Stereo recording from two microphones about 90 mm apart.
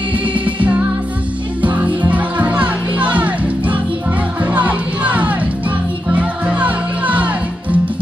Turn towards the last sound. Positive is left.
turn(degrees=-15)  # may be behind; listen again after turning